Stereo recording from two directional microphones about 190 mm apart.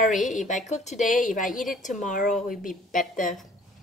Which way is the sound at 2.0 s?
45° left (ahead or behind).